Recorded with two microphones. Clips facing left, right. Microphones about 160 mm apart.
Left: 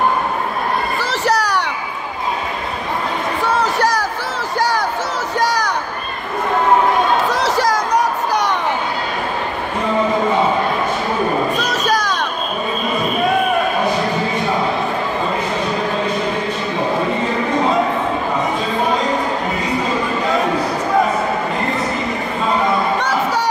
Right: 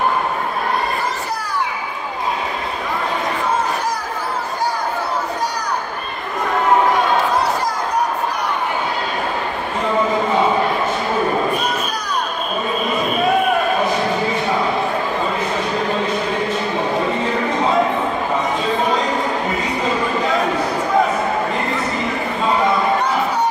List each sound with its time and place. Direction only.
1.0 s children playing: 90° left
3.4 s music: 85° left
4.6 s a sound: 90° left
7.2 s chatter: 90° left
11.6 s children playing: 85° left
22.9 s crowd: 90° left